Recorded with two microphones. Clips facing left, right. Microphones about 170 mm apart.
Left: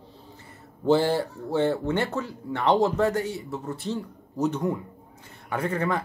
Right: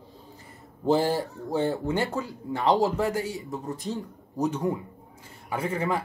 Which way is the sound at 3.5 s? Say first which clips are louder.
Left 1 dB; 40° right (ahead or behind).